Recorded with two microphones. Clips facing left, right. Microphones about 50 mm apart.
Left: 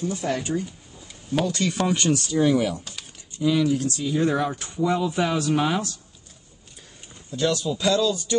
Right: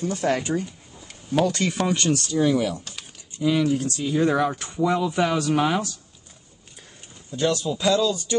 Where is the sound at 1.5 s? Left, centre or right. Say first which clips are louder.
Right 1 dB; right.